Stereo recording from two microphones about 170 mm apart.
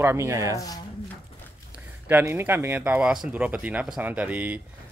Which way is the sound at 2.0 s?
10° right (ahead or behind).